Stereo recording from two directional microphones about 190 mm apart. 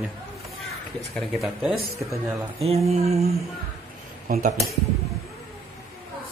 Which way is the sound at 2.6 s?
35° right (ahead or behind).